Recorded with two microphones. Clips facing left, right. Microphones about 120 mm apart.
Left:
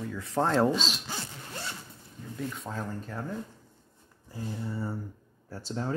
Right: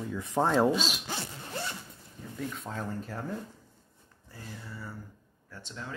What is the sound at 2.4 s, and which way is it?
Speech, centre (ahead or behind).